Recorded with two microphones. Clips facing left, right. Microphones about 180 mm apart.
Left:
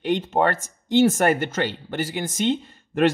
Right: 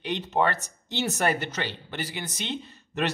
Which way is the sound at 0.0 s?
50° left (ahead or behind).